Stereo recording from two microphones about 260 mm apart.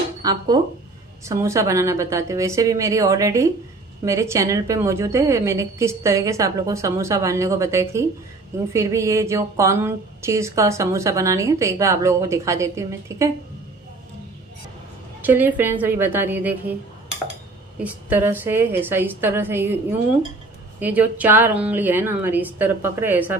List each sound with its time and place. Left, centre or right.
0.2 s speech: centre
15.2 s speech: centre
17.7 s speech: centre
20.8 s speech: centre